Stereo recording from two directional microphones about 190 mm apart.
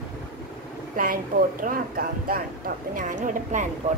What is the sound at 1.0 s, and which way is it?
Speech, 45° right (ahead or behind).